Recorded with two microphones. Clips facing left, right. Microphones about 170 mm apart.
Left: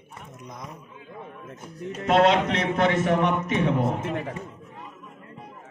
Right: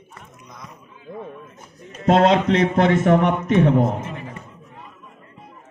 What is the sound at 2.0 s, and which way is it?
A man's voice, 50° right (ahead or behind).